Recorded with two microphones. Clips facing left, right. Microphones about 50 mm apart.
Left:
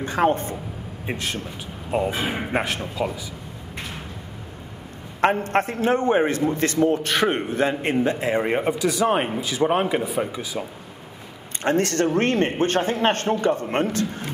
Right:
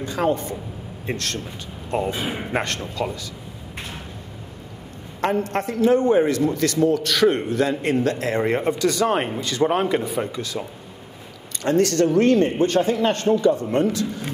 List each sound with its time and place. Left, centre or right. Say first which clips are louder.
0.0 s speech: left 2 dB; left
1.0 s speech: right 1 dB; centre
5.2 s a man's voice: left 2 dB; left; by 10.7 s centre
11.6 s speech: right 2 dB; left